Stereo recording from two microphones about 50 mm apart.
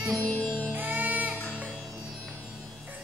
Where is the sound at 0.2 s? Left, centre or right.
Left.